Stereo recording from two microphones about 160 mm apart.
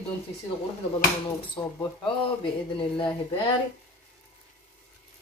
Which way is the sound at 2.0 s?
30° left (ahead or behind).